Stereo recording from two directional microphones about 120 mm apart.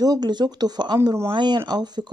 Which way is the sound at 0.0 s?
35° right (ahead or behind).